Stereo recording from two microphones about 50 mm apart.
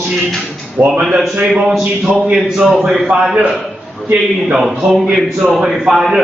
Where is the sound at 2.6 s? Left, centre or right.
Centre.